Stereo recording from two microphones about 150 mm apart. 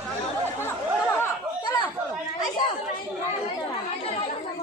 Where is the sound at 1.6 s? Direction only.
30° left (ahead or behind).